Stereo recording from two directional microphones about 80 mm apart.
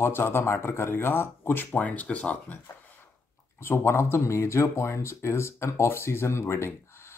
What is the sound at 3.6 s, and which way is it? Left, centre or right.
Speech, left.